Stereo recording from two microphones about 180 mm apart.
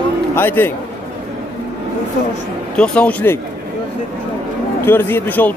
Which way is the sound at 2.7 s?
5° left (ahead or behind).